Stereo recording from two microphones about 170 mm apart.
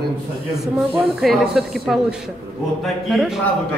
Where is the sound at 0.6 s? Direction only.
5° right (ahead or behind).